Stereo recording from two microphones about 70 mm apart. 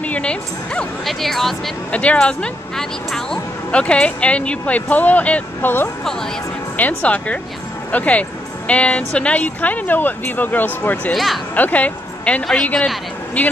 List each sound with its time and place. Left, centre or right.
0.0 s speech: centre
1.0 s speech: centre
1.9 s speech: centre